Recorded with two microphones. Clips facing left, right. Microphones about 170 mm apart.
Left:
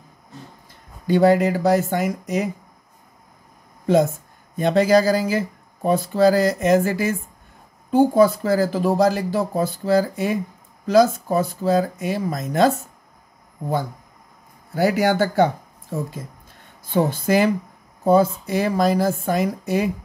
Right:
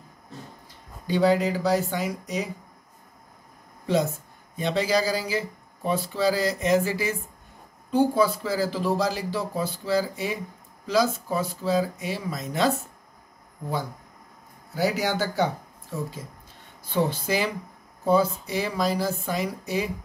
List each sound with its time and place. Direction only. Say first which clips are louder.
1.0 s speech: left 6 dB; 50° left (ahead or behind)
3.8 s speech: left 7 dB; 50° left (ahead or behind)
14.7 s speech: left 6 dB; 55° left (ahead or behind)